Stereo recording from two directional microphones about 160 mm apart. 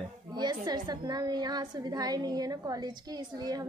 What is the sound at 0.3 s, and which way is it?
A woman's voice, 25° right (ahead or behind).